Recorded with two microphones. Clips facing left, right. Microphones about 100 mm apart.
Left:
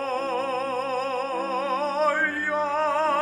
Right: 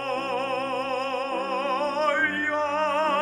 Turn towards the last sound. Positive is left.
turn(degrees=5)  # may be behind; listen again after turning